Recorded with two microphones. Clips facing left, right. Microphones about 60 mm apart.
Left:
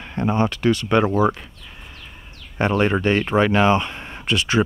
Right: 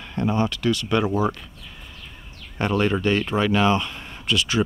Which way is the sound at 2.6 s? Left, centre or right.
Left.